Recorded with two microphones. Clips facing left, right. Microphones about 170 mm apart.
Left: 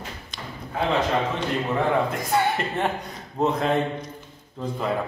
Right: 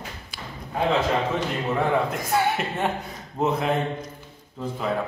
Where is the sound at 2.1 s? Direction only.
Centre (ahead or behind).